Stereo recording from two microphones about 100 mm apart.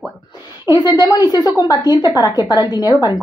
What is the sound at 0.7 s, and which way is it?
A woman's voice, 40° left (ahead or behind).